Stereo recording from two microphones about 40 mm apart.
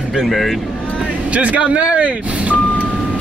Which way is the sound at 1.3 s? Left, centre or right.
Right.